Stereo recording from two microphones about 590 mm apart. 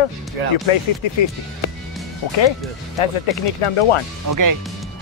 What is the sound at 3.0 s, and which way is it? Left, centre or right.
Speech, left.